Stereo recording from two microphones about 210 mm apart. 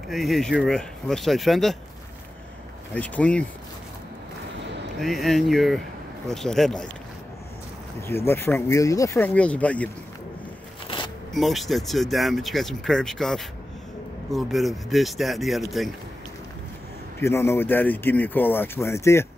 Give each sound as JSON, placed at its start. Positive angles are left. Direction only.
{"t": 0.1, "sound": "speech", "side_deg": 0}
{"t": 2.9, "sound": "speech", "side_deg": 5}
{"t": 5.0, "sound": "speech", "side_deg": 0}
{"t": 8.3, "sound": "speech", "side_deg": 10}
{"t": 10.9, "sound": "a sound", "side_deg": 25}
{"t": 11.3, "sound": "speech", "side_deg": 0}
{"t": 17.2, "sound": "speech", "side_deg": 10}